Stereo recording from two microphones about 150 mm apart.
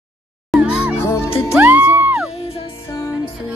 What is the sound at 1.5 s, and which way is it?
Music, 10° right (ahead or behind).